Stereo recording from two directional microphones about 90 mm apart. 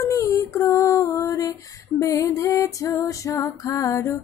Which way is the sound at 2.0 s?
35° left (ahead or behind).